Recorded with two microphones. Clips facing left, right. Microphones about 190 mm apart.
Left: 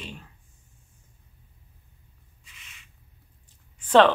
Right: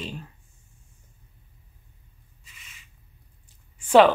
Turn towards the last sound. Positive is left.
turn(degrees=-10)  # may be behind; listen again after turning